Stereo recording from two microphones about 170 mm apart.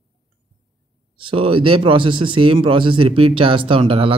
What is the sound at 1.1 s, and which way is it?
Speech, 30° right (ahead or behind).